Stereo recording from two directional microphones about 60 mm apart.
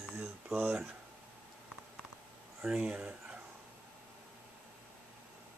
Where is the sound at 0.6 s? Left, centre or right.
Right.